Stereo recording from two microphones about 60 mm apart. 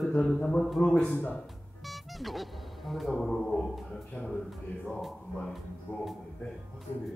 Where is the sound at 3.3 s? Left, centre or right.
Centre.